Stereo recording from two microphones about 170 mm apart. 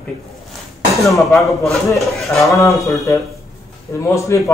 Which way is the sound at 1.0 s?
Centre (ahead or behind).